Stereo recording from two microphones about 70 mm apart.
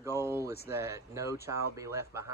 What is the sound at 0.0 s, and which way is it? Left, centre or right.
Speech, right.